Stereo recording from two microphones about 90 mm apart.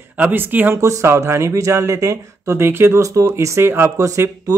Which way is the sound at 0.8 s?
35° right (ahead or behind).